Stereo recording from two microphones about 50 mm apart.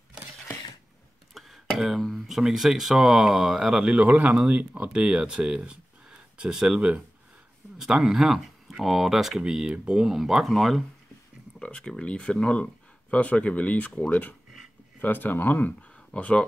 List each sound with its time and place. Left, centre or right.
1.3 s speech: centre
4.0 s speech: right; by 9.4 s centre
9.4 s speech: centre
11.6 s speech: left
15.0 s speech: left
16.1 s speech: left